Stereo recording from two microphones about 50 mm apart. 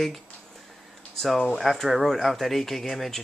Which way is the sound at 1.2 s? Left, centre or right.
Centre.